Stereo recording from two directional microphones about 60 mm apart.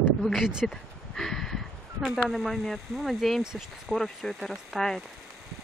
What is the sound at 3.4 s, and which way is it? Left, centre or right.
Speech, centre.